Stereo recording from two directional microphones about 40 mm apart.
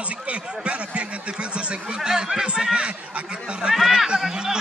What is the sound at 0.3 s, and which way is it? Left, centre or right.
Speech, right.